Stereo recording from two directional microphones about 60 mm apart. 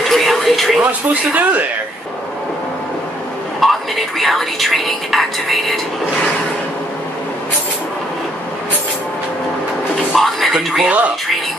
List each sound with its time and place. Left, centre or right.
0.1 s television: centre
3.6 s speech: centre
10.1 s speech: centre
10.8 s speech: right